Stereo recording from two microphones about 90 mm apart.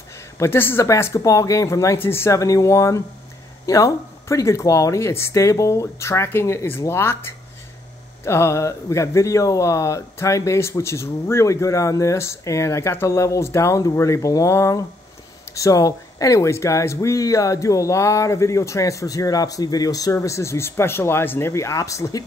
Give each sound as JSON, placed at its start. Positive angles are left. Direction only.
{"t": 0.4, "sound": "speech", "side_deg": 25}
{"t": 20.2, "sound": "speech", "side_deg": 30}